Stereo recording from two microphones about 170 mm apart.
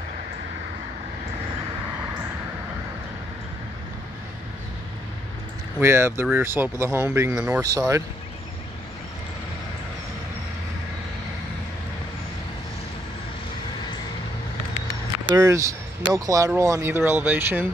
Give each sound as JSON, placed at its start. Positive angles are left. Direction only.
{"t": 5.8, "sound": "speech", "side_deg": -15}
{"t": 15.2, "sound": "speech", "side_deg": -15}